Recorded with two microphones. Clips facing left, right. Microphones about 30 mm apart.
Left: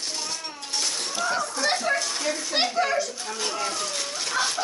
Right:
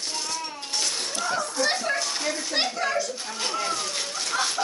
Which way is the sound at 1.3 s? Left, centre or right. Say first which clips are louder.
Left 1 dB; centre.